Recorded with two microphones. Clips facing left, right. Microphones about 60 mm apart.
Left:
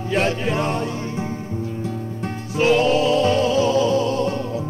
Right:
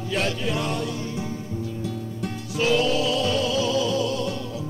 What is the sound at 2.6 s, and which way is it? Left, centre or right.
Music, left.